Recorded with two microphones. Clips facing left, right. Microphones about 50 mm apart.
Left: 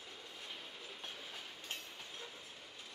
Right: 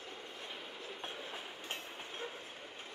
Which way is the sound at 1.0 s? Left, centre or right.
Right.